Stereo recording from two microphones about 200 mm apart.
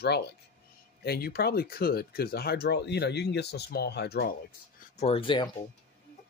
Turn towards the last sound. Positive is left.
turn(degrees=25)  # may be behind; listen again after turning